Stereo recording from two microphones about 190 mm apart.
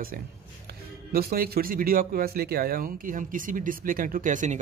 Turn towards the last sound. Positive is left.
turn(degrees=-40)  # may be behind; listen again after turning